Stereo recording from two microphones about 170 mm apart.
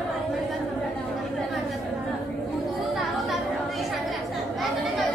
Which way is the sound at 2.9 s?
Centre (ahead or behind).